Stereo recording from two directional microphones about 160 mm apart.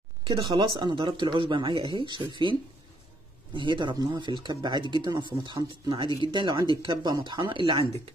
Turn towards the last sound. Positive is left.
turn(degrees=-35)  # may be behind; listen again after turning